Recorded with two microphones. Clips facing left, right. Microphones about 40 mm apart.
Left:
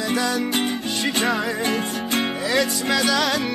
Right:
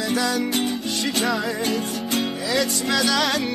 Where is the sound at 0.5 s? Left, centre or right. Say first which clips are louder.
Left 1 dB; left.